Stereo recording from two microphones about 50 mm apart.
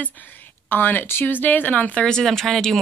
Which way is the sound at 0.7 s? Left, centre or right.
Left.